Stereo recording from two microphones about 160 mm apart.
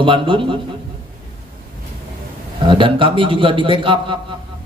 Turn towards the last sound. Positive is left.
turn(degrees=-30)  # may be behind; listen again after turning